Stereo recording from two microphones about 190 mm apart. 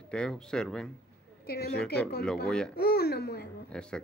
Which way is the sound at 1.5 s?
55° left (ahead or behind).